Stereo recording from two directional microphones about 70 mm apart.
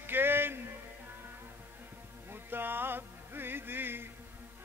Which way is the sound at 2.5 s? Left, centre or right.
Right.